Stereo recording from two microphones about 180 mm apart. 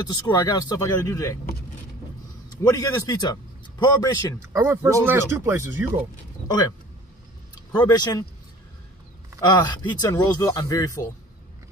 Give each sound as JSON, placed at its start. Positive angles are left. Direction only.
{"t": 0.0, "sound": "speech", "side_deg": 20}
{"t": 2.6, "sound": "speech", "side_deg": 20}
{"t": 4.5, "sound": "speech", "side_deg": -15}
{"t": 6.4, "sound": "speech", "side_deg": 25}
{"t": 7.7, "sound": "speech", "side_deg": 25}
{"t": 9.4, "sound": "speech", "side_deg": 25}